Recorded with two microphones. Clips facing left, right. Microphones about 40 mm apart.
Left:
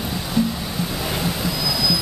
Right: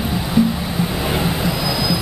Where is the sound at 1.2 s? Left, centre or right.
Centre.